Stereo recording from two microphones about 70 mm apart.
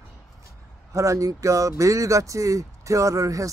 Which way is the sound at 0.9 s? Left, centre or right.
Right.